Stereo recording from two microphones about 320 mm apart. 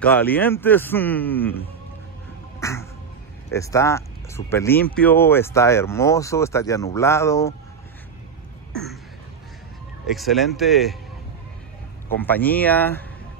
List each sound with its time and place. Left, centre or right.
0.0 s a man's voice: centre
2.6 s music: centre
3.5 s speech: centre
10.0 s a man's voice: centre
12.2 s a man's voice: centre